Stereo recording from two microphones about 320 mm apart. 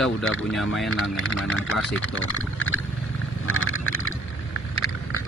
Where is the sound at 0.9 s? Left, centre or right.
Left.